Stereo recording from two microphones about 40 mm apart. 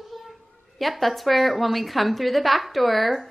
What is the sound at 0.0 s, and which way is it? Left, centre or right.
Speech, centre.